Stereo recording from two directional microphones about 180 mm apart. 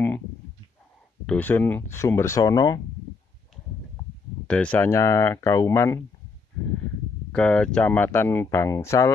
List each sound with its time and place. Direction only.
1.2 s speech: 10° left (ahead or behind)
4.5 s speech: 5° left (ahead or behind)
7.3 s speech: 5° left (ahead or behind)